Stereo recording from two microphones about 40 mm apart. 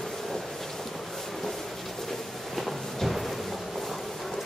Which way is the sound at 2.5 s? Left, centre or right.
Centre.